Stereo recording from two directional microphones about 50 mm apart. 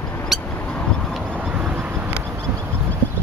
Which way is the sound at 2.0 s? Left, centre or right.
Right.